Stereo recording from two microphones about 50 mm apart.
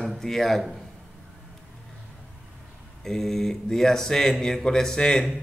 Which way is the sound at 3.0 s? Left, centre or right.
Centre.